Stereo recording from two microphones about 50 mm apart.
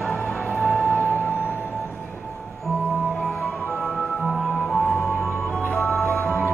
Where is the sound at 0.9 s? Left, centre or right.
Left.